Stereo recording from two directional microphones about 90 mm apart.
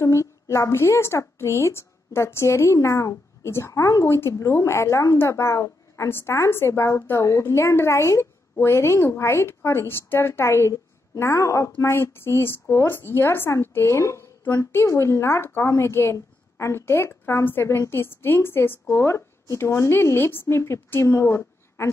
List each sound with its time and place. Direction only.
0.0 s a woman's voice: 35° left (ahead or behind)